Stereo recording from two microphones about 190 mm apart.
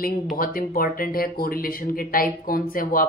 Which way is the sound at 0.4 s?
50° left (ahead or behind).